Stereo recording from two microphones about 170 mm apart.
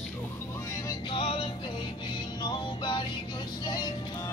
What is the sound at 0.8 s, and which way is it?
Music, 30° left (ahead or behind).